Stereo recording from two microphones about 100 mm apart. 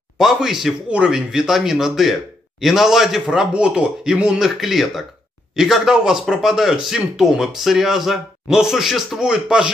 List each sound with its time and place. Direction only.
0.2 s speech: 5° right (ahead or behind)